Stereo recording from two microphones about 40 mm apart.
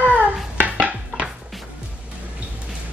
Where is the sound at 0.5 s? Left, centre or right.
Right.